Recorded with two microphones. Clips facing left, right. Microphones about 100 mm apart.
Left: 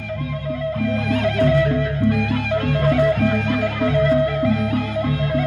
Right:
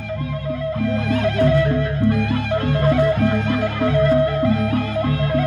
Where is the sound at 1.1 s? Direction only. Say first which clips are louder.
Even; 30° right (ahead or behind).